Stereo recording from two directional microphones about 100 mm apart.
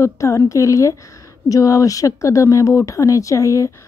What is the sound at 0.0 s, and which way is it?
Speech, 30° left (ahead or behind).